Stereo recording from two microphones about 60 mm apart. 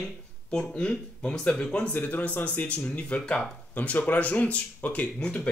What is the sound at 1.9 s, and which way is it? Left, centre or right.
A man's voice, left.